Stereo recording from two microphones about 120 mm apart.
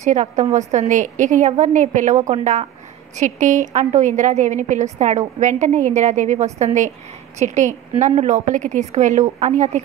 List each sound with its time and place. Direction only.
0.0 s a woman's voice: 80° right
4.9 s a woman's voice: 75° right (ahead or behind)